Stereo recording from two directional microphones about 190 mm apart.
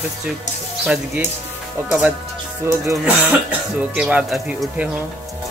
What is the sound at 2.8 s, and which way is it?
Speech, 10° right (ahead or behind).